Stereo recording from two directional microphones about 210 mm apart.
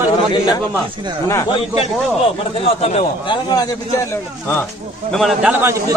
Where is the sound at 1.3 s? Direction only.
15° left (ahead or behind).